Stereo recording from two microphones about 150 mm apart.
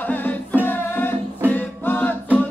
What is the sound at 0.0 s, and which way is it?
A capella, 10° left (ahead or behind).